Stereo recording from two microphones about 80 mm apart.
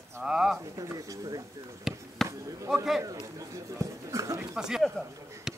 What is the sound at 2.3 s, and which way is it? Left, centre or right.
Basketball bounce, right.